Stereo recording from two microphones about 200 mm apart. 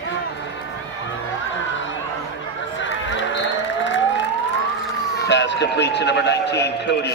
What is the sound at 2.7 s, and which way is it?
Siren, 65° left (ahead or behind).